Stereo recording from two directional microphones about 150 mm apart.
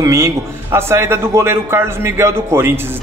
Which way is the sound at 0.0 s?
20° right (ahead or behind).